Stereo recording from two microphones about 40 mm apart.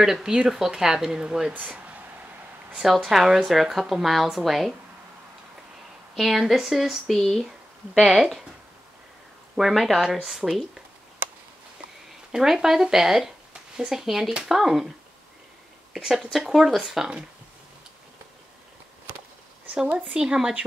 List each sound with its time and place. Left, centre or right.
0.0 s speech: centre
1.5 s speech: right
2.8 s a woman's voice: centre
6.1 s a woman's voice: centre
7.1 s speech: centre
8.0 s speech: centre
9.6 s a woman's voice: centre
12.3 s speech: centre
16.0 s speech: centre
20.2 s speech: centre